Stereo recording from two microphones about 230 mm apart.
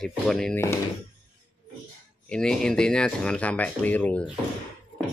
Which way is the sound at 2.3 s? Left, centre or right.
Centre.